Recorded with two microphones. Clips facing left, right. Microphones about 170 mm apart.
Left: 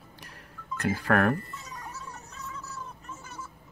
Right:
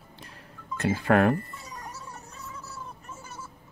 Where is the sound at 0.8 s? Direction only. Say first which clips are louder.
Right 3 dB; 20° right (ahead or behind).